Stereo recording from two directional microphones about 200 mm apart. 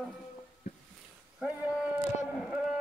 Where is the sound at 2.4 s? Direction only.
Centre (ahead or behind).